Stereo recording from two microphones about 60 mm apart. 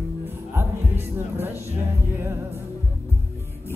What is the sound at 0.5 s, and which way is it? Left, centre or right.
Music, right.